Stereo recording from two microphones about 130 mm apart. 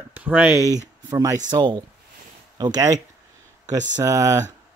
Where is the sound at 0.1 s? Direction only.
15° right (ahead or behind).